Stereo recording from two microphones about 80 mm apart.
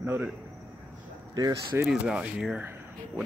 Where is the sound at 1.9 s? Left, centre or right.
Centre.